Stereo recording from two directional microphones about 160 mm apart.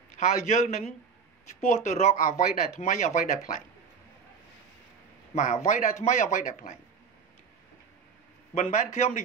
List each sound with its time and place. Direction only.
0.2 s speech: 50° left (ahead or behind)
5.3 s a man's voice: 50° left (ahead or behind)
8.5 s speech: 45° left (ahead or behind)